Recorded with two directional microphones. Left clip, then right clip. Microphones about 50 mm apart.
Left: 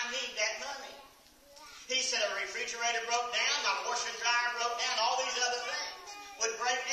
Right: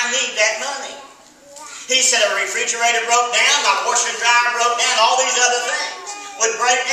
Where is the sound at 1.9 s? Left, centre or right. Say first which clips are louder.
Right 16 dB; centre.